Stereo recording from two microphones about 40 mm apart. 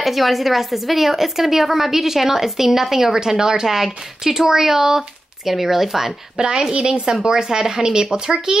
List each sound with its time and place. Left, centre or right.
0.0 s a woman's voice: centre; by 8.5 s right